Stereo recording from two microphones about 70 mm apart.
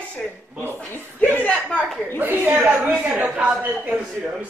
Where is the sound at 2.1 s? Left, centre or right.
Right.